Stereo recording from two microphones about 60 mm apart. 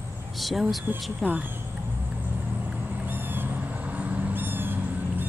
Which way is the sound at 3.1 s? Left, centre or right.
Right.